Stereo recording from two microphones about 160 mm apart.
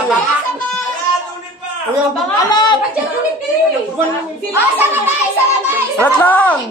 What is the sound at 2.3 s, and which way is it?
Speech, 25° left (ahead or behind).